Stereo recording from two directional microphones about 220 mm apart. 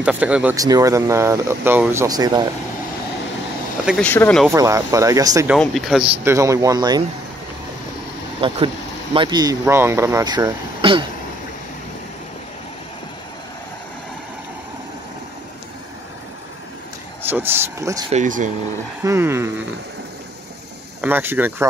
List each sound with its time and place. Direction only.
0.0 s speech: 5° right (ahead or behind)
3.8 s speech: 5° left (ahead or behind)
4.5 s speech: 15° right (ahead or behind)
5.5 s speech: centre (ahead or behind); by 7.0 s 15° right (ahead or behind)
8.4 s speech: 25° right (ahead or behind)
17.2 s speech: 10° right (ahead or behind)
18.1 s speech: 35° right (ahead or behind)
19.0 s speech: 10° right (ahead or behind)
21.0 s speech: 10° right (ahead or behind)